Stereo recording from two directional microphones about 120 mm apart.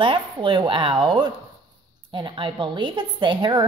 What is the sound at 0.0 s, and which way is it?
A woman's voice, 45° right (ahead or behind).